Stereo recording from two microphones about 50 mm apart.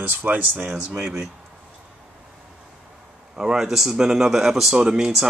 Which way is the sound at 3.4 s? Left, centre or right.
Centre.